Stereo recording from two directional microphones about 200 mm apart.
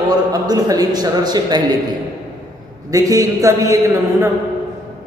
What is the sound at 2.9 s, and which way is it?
A man's voice, 15° right (ahead or behind).